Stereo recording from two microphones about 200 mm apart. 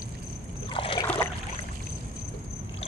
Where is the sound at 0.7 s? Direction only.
25° left (ahead or behind).